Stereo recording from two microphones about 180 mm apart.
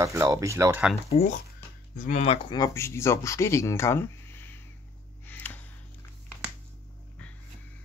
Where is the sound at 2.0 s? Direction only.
45° left (ahead or behind).